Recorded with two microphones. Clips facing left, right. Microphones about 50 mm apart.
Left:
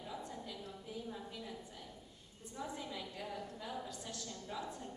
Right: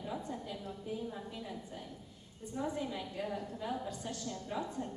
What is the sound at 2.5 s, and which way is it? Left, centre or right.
A woman's voice, right.